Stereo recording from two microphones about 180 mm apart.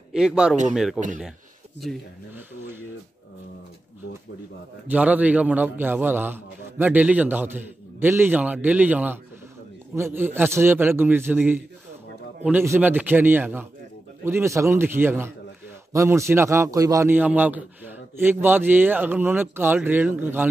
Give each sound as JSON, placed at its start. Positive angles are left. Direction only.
{"t": 0.1, "sound": "a man's voice", "side_deg": -5}
{"t": 4.8, "sound": "a man's voice", "side_deg": -10}